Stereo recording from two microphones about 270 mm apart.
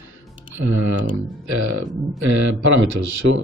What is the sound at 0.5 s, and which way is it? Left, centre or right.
Speech, right.